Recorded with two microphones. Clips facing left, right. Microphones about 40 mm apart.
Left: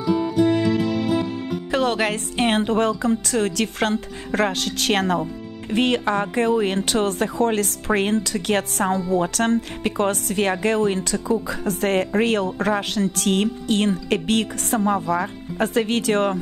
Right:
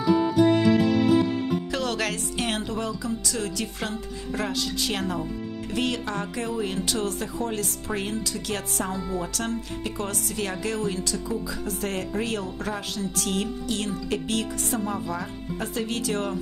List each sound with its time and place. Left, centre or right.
1.7 s speech: left
5.7 s speech: left